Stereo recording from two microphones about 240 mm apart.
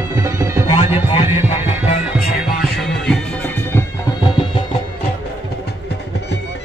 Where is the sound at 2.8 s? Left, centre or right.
Centre.